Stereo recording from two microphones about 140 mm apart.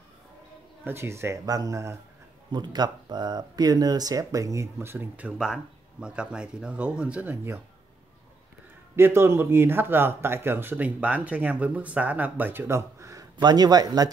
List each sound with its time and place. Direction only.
0.8 s speech: 15° right (ahead or behind)
8.9 s speech: 15° right (ahead or behind)